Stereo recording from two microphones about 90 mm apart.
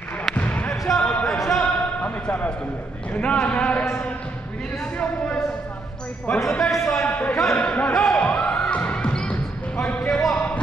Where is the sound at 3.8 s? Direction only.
30° left (ahead or behind).